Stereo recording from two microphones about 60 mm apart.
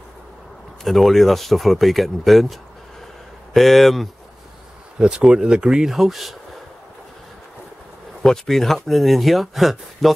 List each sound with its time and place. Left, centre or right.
0.8 s speech: centre
4.9 s speech: centre
8.2 s speech: centre